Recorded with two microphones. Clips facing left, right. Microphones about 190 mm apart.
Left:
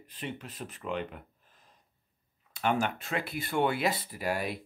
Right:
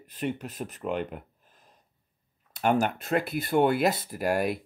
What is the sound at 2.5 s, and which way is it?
Speech, 40° right (ahead or behind).